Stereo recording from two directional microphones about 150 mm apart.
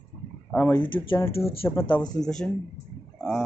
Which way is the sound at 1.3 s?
40° left (ahead or behind).